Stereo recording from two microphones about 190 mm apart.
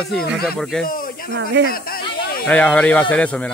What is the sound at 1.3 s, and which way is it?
Speech, 70° right (ahead or behind).